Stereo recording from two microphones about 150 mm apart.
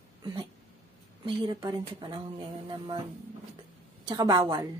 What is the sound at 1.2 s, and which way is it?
Speech, 35° right (ahead or behind).